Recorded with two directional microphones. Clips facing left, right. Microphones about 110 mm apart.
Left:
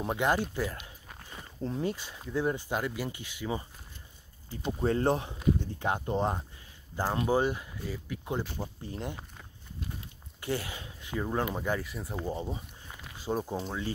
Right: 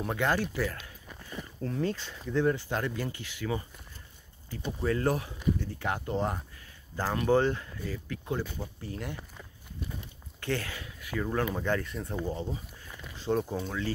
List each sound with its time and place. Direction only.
0.0 s speech: 20° left (ahead or behind)
4.8 s speech: 30° left (ahead or behind)
10.4 s speech: 15° left (ahead or behind)
12.3 s speech: 15° left (ahead or behind)